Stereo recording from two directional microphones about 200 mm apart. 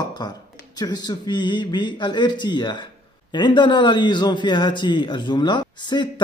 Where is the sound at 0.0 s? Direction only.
20° left (ahead or behind).